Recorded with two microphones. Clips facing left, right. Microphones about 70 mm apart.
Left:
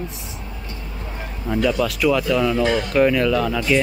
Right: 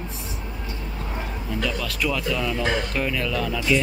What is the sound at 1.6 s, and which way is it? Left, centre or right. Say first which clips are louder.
Speech: left 9 dB; centre.